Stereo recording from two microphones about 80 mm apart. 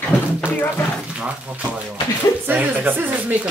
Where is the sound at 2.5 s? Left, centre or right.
Right.